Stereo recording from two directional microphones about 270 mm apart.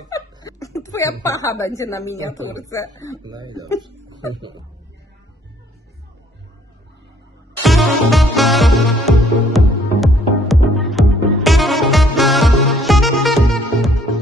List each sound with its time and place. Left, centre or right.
0.1 s a sound: centre
1.2 s a woman's voice: centre
3.2 s speech: centre
7.6 s music: centre